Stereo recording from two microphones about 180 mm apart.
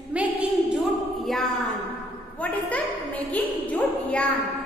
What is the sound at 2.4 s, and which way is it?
A woman's voice, 10° left (ahead or behind).